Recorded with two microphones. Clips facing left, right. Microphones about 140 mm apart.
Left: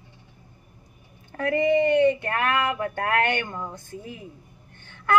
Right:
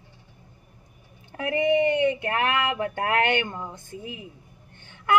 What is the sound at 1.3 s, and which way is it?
Speech, 20° right (ahead or behind).